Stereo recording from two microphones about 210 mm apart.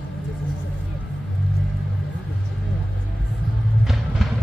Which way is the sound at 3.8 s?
Centre (ahead or behind).